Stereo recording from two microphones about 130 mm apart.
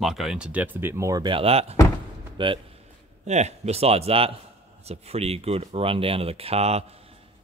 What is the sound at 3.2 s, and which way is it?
Speech, 60° right (ahead or behind).